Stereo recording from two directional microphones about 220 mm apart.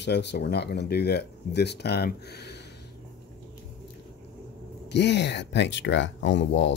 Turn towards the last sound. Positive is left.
turn(degrees=55)  # may be behind; listen again after turning